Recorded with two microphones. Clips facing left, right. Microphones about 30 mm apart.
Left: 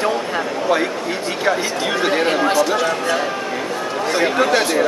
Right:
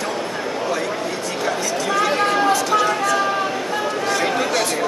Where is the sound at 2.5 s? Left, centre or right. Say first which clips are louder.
Left 1 dB; centre.